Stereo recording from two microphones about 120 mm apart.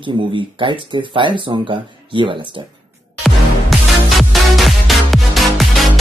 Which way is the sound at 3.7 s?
Centre (ahead or behind).